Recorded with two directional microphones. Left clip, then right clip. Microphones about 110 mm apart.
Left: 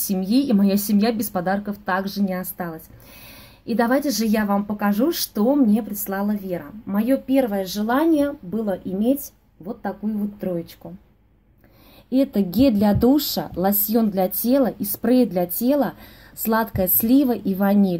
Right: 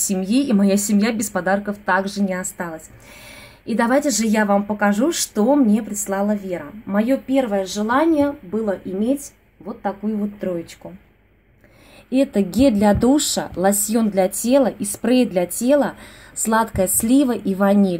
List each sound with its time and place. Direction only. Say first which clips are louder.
0.0 s a woman's voice: right 1 dB; 10° left (ahead or behind)
7.3 s speech: right 2 dB; 30° left (ahead or behind)
7.6 s speech: right 2 dB; 45° left (ahead or behind)
12.1 s a woman's voice: right 2 dB; 5° left (ahead or behind)